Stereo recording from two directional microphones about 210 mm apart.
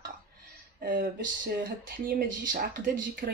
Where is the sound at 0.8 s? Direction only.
40° right (ahead or behind).